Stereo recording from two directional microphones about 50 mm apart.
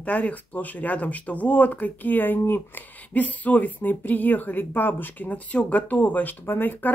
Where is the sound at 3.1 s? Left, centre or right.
Left.